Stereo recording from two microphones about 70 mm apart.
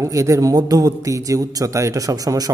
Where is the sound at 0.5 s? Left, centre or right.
Right.